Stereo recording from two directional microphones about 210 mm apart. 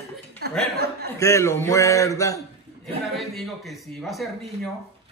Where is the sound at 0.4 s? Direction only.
50° right (ahead or behind).